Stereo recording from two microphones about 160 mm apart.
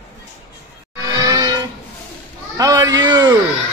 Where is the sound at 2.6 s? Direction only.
25° right (ahead or behind).